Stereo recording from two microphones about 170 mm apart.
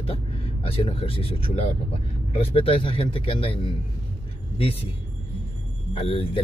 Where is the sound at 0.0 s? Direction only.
35° left (ahead or behind).